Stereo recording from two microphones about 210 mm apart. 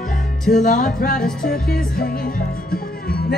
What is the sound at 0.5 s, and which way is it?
Music, 40° left (ahead or behind).